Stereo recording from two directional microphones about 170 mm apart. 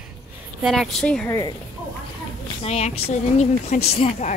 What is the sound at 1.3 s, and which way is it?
Speech, 25° left (ahead or behind).